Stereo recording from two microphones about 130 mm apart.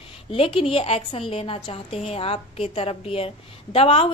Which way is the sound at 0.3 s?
45° left (ahead or behind).